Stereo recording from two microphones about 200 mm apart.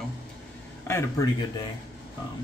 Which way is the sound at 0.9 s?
15° left (ahead or behind).